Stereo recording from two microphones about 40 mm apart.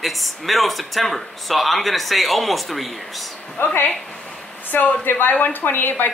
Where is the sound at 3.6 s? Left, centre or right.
Left.